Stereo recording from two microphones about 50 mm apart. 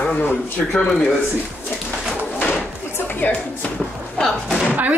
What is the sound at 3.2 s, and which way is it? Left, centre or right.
Speech, left.